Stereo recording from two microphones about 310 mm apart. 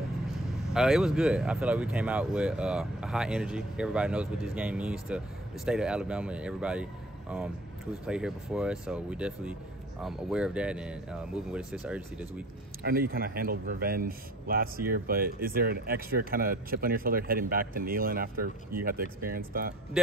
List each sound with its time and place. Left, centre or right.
0.7 s speech: centre
12.8 s a man's voice: right